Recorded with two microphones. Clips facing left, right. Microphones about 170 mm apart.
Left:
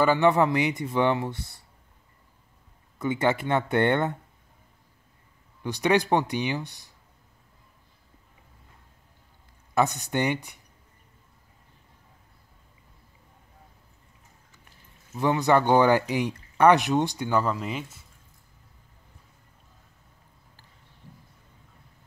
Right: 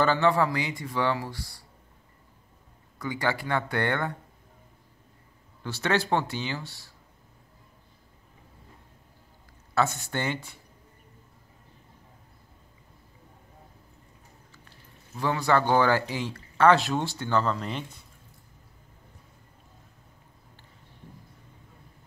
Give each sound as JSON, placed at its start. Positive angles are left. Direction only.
{"t": 0.0, "sound": "speech", "side_deg": 15}
{"t": 3.0, "sound": "speech", "side_deg": 20}
{"t": 5.6, "sound": "speech", "side_deg": 15}
{"t": 9.8, "sound": "speech", "side_deg": 15}
{"t": 15.1, "sound": "speech", "side_deg": 20}